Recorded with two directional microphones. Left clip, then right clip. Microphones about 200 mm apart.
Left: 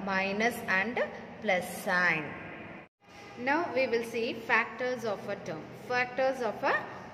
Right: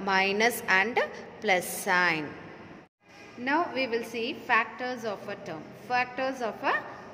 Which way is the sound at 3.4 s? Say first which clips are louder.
Right 1 dB; 15° right (ahead or behind).